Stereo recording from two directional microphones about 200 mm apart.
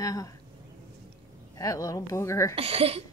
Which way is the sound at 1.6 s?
15° left (ahead or behind).